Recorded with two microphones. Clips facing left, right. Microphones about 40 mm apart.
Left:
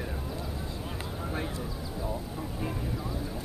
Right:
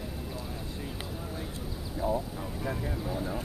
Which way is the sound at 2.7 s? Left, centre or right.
Right.